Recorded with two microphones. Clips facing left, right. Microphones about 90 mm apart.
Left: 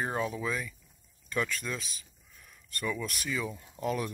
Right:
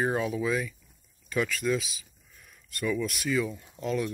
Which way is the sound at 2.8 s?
5° left (ahead or behind).